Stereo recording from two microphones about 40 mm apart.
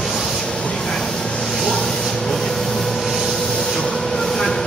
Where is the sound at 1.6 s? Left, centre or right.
Centre.